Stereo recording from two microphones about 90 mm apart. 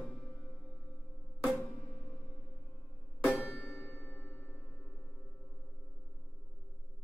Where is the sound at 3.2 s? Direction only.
Centre (ahead or behind); by 4.9 s 25° left (ahead or behind).